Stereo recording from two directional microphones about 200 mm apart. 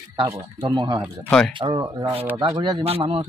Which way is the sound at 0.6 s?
20° right (ahead or behind).